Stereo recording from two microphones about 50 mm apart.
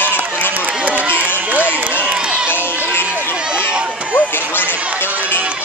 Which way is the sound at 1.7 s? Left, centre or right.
Right.